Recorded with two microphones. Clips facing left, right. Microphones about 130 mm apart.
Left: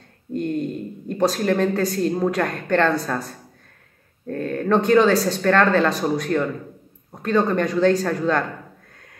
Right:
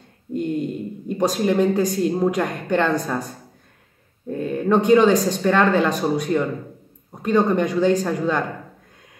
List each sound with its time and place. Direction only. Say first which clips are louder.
0.3 s speech: even; 10° right (ahead or behind)